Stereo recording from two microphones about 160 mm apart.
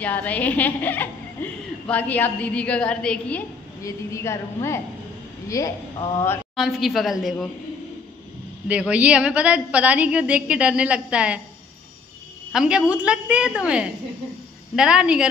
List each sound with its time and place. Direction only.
0.0 s a woman's voice: 10° left (ahead or behind)
3.8 s a woman's voice: 20° left (ahead or behind)
6.5 s a woman's voice: centre (ahead or behind)
8.6 s a woman's voice: 10° right (ahead or behind)
12.5 s a woman's voice: 5° right (ahead or behind)